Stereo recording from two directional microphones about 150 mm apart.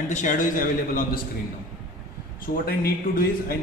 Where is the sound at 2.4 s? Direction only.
75° left (ahead or behind).